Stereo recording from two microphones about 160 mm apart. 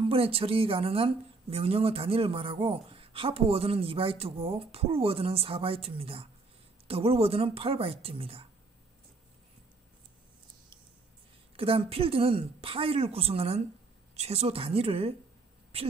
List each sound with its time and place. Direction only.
0.0 s a woman's voice: 35° right (ahead or behind)
11.5 s a woman's voice: 35° right (ahead or behind)